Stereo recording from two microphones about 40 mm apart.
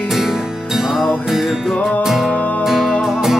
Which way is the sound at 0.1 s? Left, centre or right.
Centre.